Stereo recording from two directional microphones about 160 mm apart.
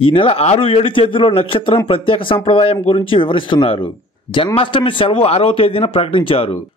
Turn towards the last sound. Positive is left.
turn(degrees=35)  # may be behind; listen again after turning